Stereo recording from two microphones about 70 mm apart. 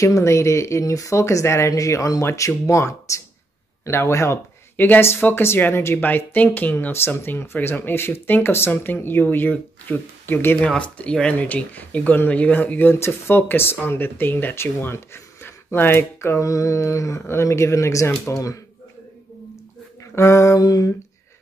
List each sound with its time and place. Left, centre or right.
0.0 s speech: left
4.7 s speech: left
10.6 s speech: centre; by 16.4 s left
16.4 s speech: left
20.2 s speech: left
20.6 s a sound: left